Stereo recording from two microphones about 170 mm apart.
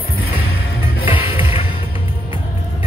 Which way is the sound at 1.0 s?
30° left (ahead or behind).